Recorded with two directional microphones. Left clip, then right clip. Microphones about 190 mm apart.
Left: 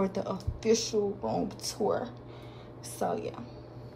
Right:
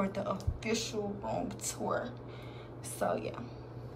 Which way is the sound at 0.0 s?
20° left (ahead or behind).